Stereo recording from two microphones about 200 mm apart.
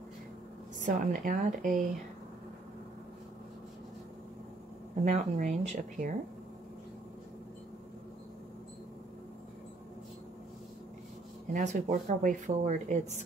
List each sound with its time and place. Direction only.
0.8 s speech: 40° right (ahead or behind)
5.0 s speech: 35° right (ahead or behind)
11.5 s speech: 35° right (ahead or behind)